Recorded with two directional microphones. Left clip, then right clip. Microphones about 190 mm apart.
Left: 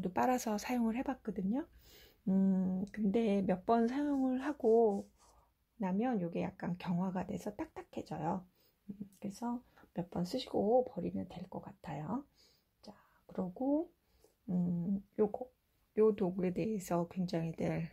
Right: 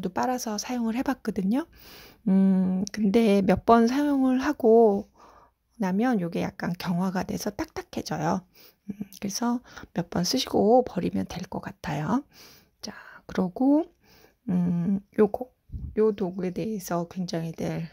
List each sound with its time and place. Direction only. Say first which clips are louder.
0.0 s a woman's voice: right 6 dB; 15° right (ahead or behind); by 15.4 s 40° right (ahead or behind)
15.9 s speech: right 6 dB; 20° right (ahead or behind)